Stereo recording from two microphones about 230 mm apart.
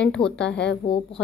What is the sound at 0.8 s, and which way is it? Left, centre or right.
Speech, left.